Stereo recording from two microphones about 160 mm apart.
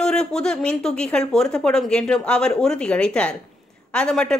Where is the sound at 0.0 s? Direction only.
5° left (ahead or behind).